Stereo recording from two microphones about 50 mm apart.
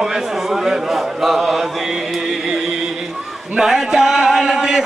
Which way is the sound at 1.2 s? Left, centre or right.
Centre.